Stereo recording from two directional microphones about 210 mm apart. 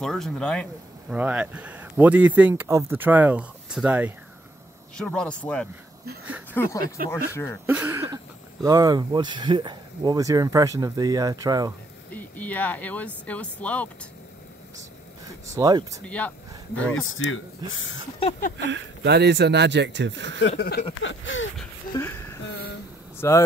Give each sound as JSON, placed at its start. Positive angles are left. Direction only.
{"t": 0.0, "sound": "speech", "side_deg": 0}
{"t": 1.1, "sound": "speech", "side_deg": -5}
{"t": 7.6, "sound": "speech", "side_deg": -10}
{"t": 12.1, "sound": "speech", "side_deg": 10}
{"t": 15.5, "sound": "speech", "side_deg": -15}
{"t": 16.1, "sound": "speech", "side_deg": 5}
{"t": 17.0, "sound": "speech", "side_deg": 70}
{"t": 18.6, "sound": "speech", "side_deg": -55}
{"t": 20.4, "sound": "a sound", "side_deg": 50}
{"t": 21.0, "sound": "a sound", "side_deg": 65}
{"t": 21.9, "sound": "a sound", "side_deg": 10}
{"t": 22.5, "sound": "a sound", "side_deg": 50}
{"t": 23.1, "sound": "speech", "side_deg": 15}